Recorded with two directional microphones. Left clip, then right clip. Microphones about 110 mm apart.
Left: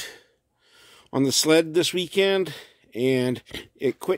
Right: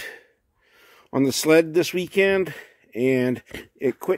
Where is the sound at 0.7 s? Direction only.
30° left (ahead or behind).